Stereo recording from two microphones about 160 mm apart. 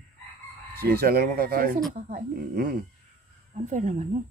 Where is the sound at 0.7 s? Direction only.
75° right (ahead or behind).